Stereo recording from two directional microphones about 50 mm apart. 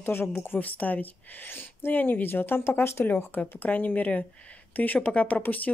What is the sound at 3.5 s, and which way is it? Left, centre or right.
Speech, left.